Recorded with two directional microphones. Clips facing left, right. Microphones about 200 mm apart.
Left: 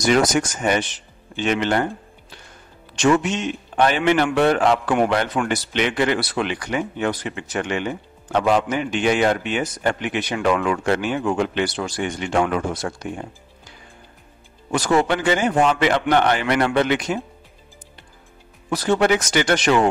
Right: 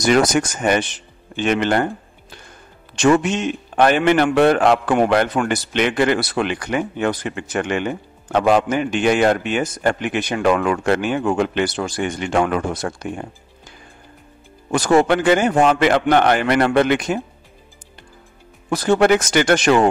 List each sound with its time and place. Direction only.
0.0 s a man's voice: 55° right (ahead or behind)
3.0 s a man's voice: 50° right (ahead or behind)
14.7 s a man's voice: 45° right (ahead or behind)
18.7 s a man's voice: 45° right (ahead or behind)